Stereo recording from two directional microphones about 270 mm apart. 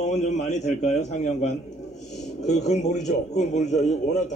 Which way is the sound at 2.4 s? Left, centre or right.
Left.